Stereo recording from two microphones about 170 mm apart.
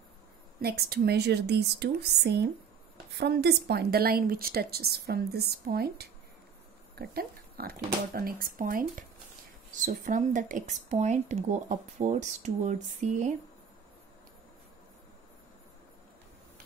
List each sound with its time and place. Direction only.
0.6 s a woman's voice: 65° right (ahead or behind); by 13.3 s 45° right (ahead or behind)